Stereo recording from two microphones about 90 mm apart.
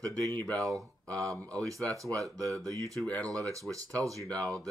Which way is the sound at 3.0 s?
15° left (ahead or behind).